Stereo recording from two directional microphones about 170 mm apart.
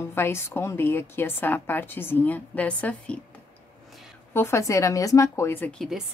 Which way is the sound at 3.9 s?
Centre (ahead or behind).